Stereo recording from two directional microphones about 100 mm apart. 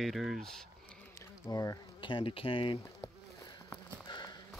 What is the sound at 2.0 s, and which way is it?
Speech, 55° left (ahead or behind).